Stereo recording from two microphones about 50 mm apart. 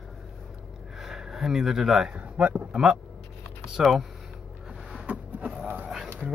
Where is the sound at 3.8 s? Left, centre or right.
Centre.